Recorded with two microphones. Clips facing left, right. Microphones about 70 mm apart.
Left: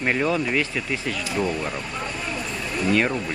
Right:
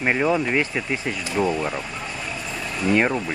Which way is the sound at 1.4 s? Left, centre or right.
Centre.